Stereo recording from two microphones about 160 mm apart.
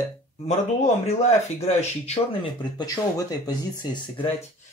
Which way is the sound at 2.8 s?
20° left (ahead or behind).